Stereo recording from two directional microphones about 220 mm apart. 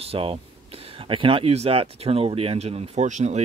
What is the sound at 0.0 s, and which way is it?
Speech, 25° right (ahead or behind).